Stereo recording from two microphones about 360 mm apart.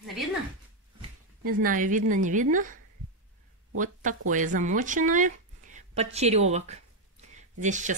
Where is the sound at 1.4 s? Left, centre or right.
Right.